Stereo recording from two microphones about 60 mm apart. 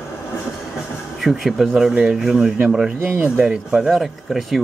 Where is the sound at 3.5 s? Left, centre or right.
Centre.